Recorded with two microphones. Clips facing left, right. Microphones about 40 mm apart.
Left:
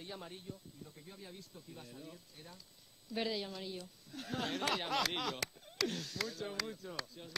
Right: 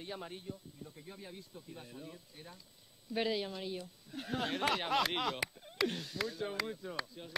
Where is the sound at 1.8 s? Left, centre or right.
Centre.